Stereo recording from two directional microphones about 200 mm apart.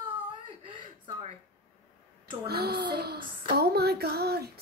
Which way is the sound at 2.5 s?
50° right (ahead or behind).